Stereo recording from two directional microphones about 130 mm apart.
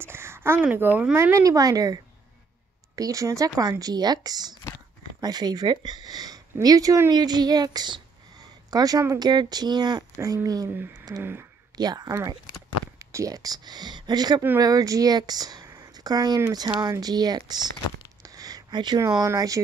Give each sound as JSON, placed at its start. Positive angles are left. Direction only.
{"t": 0.0, "sound": "speech", "side_deg": -20}
{"t": 3.0, "sound": "speech", "side_deg": -25}
{"t": 10.7, "sound": "speech", "side_deg": -15}
{"t": 11.7, "sound": "speech", "side_deg": -30}